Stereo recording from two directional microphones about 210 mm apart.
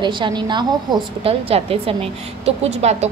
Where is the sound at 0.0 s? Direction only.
20° right (ahead or behind).